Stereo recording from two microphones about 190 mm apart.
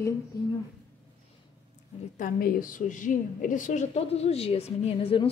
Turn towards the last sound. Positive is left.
turn(degrees=30)  # may be behind; listen again after turning